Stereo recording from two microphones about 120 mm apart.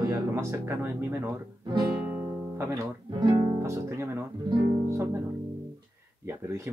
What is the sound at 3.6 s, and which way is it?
Speech, 25° right (ahead or behind).